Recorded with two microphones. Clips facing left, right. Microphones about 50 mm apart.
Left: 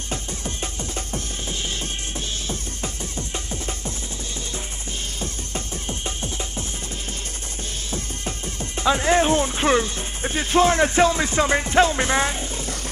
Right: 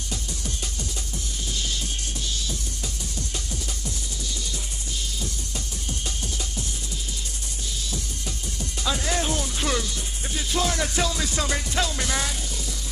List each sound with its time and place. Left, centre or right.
2.4 s music: left
5.2 s music: left
7.9 s speech: left